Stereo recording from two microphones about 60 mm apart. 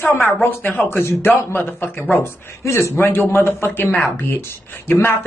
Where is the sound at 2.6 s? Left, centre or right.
Left.